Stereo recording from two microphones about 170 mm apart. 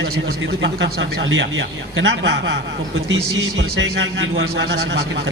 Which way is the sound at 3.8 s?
90° right.